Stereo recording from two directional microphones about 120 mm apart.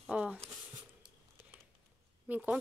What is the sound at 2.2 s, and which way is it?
Speech, 15° right (ahead or behind).